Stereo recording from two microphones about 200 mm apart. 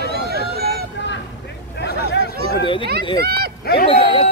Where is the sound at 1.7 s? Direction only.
55° left (ahead or behind).